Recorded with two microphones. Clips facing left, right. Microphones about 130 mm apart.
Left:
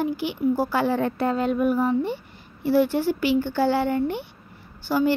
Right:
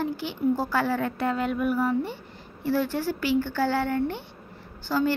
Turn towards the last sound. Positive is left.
turn(degrees=15)  # may be behind; listen again after turning